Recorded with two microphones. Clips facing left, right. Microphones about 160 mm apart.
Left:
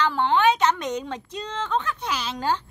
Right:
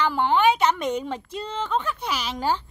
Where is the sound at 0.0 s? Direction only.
10° right (ahead or behind).